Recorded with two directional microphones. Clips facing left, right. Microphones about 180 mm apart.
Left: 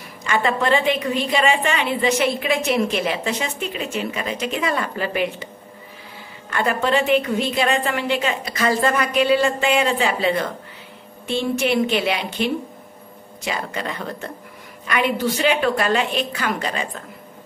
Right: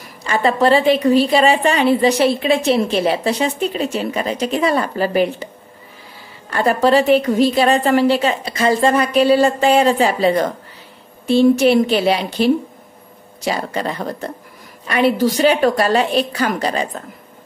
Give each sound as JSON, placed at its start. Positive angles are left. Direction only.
{"t": 0.2, "sound": "a woman's voice", "side_deg": -35}
{"t": 6.5, "sound": "a woman's voice", "side_deg": -35}